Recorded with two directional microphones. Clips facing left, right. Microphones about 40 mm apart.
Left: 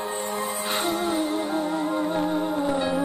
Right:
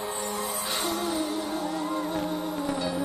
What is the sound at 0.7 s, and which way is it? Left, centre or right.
Music, left.